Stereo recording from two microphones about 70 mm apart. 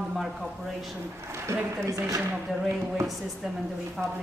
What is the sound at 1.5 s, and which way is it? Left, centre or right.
Speech, right.